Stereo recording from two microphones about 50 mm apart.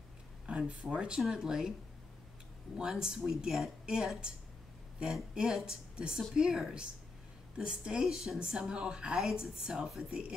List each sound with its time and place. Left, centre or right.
0.5 s a sound: right
0.8 s speech: centre
2.8 s speech: centre